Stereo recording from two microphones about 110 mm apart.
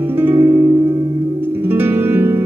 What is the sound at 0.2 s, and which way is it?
Music, 20° right (ahead or behind).